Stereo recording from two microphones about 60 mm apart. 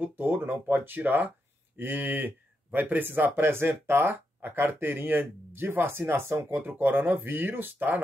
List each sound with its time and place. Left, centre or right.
0.0 s speech: right